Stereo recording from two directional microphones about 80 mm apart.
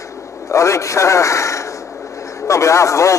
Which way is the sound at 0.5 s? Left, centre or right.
Left.